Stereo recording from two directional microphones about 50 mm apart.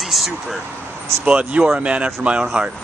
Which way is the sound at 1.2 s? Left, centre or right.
Right.